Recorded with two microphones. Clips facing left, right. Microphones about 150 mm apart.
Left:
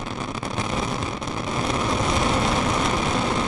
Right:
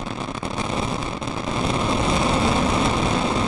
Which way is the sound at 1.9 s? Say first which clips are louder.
Right 2 dB; 30° right (ahead or behind).